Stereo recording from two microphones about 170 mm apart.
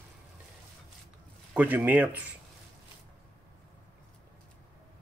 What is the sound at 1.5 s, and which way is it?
Speech, 10° right (ahead or behind).